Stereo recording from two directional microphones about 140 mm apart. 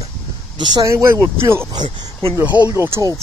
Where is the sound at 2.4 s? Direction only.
10° right (ahead or behind).